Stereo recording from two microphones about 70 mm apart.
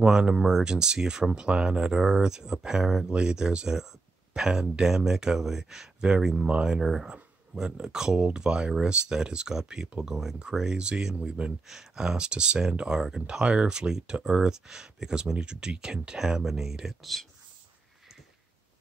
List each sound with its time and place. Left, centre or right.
0.0 s speech: centre